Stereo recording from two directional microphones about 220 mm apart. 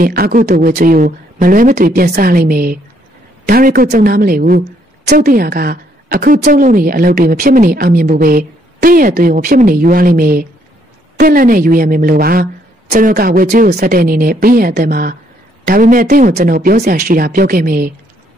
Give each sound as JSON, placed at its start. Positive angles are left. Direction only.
{"t": 0.0, "sound": "a woman's voice", "side_deg": -40}